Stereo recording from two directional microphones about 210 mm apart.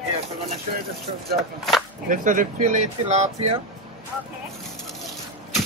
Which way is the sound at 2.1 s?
40° right (ahead or behind).